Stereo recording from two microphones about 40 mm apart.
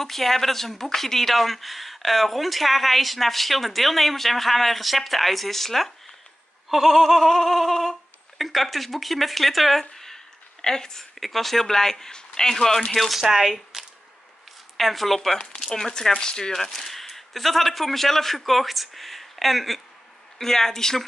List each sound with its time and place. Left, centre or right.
0.0 s a woman's voice: centre
11.1 s a woman's voice: centre
13.2 s a woman's voice: centre
16.5 s a woman's voice: centre